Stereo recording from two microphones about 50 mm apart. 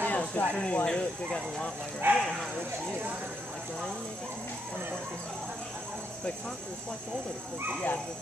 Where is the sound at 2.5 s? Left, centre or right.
Right.